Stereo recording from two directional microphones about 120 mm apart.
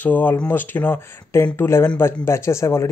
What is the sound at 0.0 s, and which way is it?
Speech, 15° left (ahead or behind).